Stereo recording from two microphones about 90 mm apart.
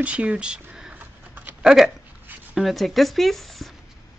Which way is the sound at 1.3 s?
20° right (ahead or behind).